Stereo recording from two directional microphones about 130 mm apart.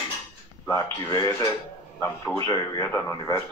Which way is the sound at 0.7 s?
25° left (ahead or behind).